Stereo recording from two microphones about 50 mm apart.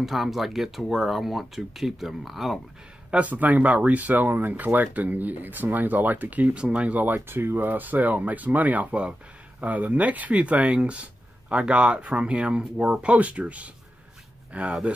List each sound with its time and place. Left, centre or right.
0.0 s speech: centre
3.1 s speech: right
6.3 s speech: right
7.2 s speech: right